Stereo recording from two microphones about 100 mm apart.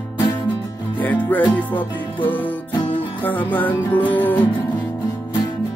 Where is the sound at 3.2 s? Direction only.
20° left (ahead or behind).